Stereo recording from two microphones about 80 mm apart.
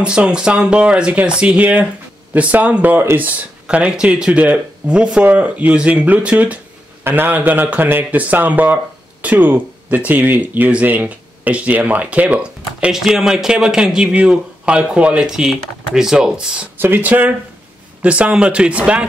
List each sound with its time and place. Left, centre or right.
0.0 s speech: centre
16.7 s speech: right